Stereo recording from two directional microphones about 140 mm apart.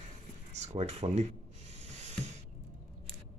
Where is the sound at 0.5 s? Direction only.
50° right (ahead or behind).